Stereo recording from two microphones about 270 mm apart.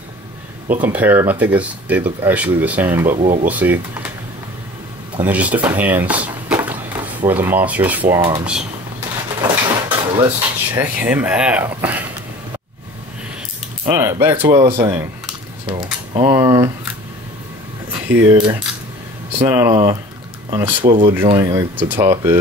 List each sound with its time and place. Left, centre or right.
0.8 s speech: centre
5.2 s speech: centre
9.4 s drawer open or close: centre
10.7 s speech: centre
13.8 s speech: centre
18.2 s speech: centre